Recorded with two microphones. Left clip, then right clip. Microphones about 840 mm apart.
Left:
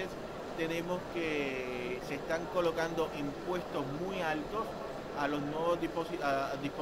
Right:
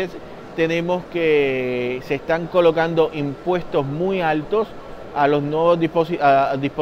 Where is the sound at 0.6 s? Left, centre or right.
Right.